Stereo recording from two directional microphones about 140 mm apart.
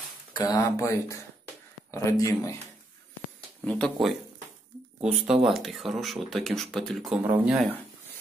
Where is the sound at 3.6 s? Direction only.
10° left (ahead or behind).